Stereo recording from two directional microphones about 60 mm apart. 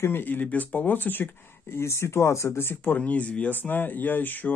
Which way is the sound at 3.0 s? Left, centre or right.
Left.